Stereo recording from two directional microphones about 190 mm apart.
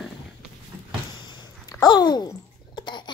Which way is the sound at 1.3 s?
20° left (ahead or behind).